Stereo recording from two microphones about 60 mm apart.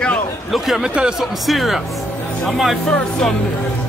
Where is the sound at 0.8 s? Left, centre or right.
Centre.